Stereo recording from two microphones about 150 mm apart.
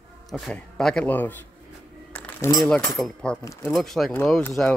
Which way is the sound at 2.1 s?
15° left (ahead or behind).